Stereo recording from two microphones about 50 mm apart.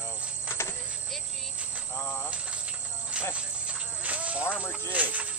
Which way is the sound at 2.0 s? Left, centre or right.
Left.